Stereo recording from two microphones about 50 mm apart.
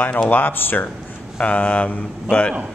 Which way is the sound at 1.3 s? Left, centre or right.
Left.